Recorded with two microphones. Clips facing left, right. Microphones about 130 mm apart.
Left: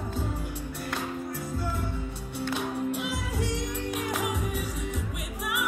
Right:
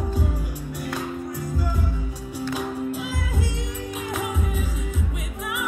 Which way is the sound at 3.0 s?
80° left.